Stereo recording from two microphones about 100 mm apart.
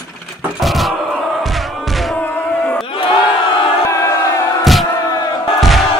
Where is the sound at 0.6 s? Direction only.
Centre (ahead or behind).